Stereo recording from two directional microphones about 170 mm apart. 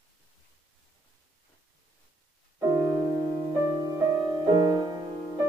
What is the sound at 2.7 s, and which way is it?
Music, 20° right (ahead or behind).